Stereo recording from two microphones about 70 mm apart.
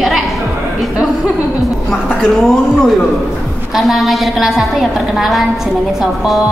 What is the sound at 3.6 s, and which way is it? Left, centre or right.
A woman's voice, centre.